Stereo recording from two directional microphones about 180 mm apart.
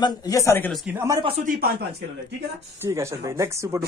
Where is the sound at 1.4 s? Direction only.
55° right (ahead or behind).